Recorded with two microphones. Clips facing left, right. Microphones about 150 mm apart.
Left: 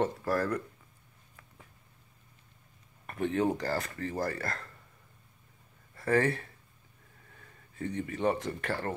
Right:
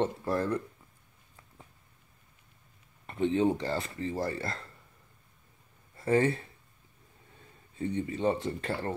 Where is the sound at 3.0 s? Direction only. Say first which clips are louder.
Right 3 dB; 25° right (ahead or behind).